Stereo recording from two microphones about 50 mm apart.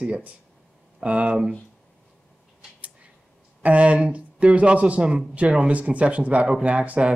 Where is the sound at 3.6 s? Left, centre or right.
Right.